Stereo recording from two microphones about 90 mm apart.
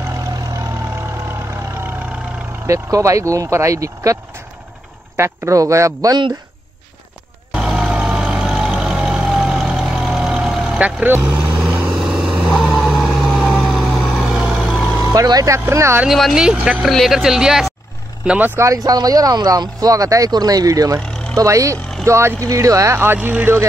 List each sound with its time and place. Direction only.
0.0 s vehicle: 35° right (ahead or behind)
2.6 s speech: 35° right (ahead or behind)
7.5 s vehicle: 5° right (ahead or behind)
10.8 s speech: 20° right (ahead or behind)
11.3 s vehicle: 20° right (ahead or behind)
11.9 s vehicle: 5° right (ahead or behind)
12.8 s a sound: centre (ahead or behind)
14.2 s vehicle: 10° right (ahead or behind)
15.1 s speech: 45° right (ahead or behind)
15.5 s speech: 30° right (ahead or behind)
16.1 s speech: centre (ahead or behind)
18.6 s speech: 40° right (ahead or behind); by 23.6 s 25° right (ahead or behind)